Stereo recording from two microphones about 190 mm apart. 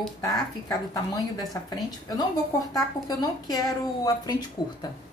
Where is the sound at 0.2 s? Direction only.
20° left (ahead or behind).